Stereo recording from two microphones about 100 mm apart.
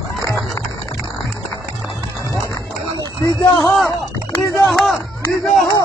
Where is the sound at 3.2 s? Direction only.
35° left (ahead or behind).